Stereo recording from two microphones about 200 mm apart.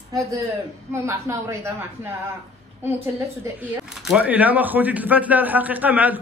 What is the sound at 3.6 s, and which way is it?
Speech, 5° right (ahead or behind).